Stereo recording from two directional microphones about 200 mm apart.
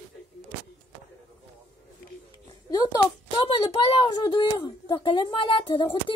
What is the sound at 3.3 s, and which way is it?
A woman's voice, 25° left (ahead or behind).